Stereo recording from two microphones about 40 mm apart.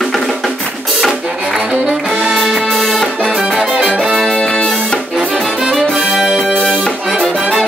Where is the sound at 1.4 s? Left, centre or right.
Centre.